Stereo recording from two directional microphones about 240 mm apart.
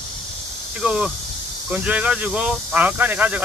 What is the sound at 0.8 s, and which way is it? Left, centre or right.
Speech, centre.